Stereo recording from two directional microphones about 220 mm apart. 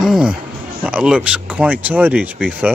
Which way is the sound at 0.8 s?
5° right (ahead or behind).